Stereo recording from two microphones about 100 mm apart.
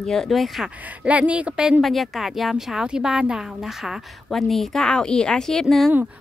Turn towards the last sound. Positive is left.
turn(degrees=0)  # may be behind; listen again after turning